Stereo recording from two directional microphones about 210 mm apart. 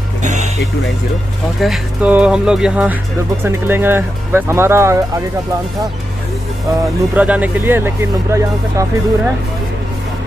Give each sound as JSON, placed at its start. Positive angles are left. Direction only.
{"t": 0.2, "sound": "music", "side_deg": -35}
{"t": 1.6, "sound": "speech", "side_deg": -5}
{"t": 7.2, "sound": "speech", "side_deg": -5}